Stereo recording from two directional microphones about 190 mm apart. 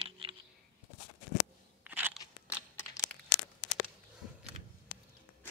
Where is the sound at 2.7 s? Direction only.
10° left (ahead or behind).